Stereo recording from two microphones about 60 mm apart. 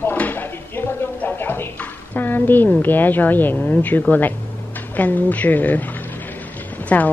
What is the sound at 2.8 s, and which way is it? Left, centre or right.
A woman's voice, left.